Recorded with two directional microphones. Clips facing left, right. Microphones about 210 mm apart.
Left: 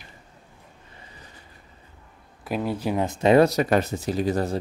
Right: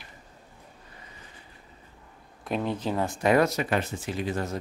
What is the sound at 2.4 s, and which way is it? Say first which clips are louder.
Speech: left 2 dB; 5° left (ahead or behind).